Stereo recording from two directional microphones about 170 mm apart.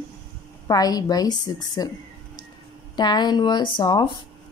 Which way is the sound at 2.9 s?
25° left (ahead or behind).